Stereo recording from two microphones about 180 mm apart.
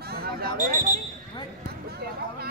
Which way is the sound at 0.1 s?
60° right (ahead or behind).